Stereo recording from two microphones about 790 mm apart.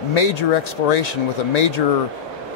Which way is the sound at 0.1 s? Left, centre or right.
Left.